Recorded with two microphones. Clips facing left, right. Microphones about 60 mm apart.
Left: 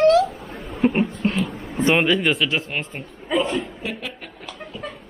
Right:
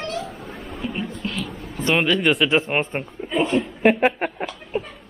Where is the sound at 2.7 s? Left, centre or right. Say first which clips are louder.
Right 6 dB; right.